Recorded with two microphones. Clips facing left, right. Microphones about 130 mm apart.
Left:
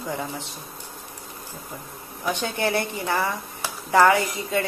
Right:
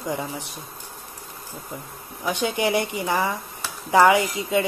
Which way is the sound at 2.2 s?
15° right (ahead or behind).